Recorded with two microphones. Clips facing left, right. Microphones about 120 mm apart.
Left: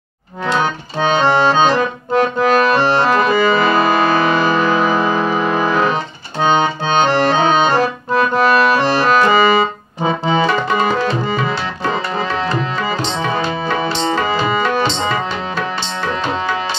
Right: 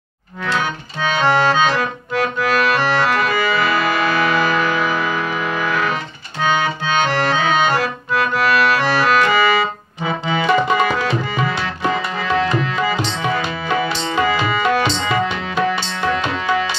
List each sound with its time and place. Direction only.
0.6 s accordion: 30° left (ahead or behind)
10.0 s tabla: 30° left (ahead or behind)
16.1 s music: 30° left (ahead or behind)